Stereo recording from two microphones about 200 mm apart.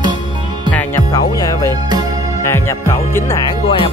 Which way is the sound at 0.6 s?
10° left (ahead or behind).